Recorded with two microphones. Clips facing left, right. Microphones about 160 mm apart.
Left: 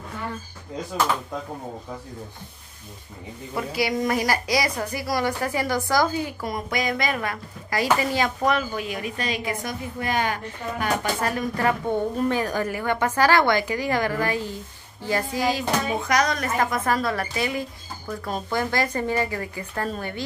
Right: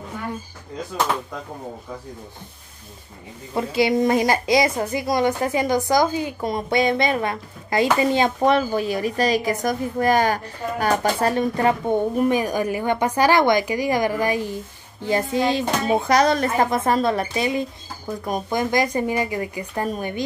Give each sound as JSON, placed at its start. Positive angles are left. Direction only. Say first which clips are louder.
{"t": 3.5, "sound": "a woman's voice", "louder": "right 6 dB", "side_deg": -25}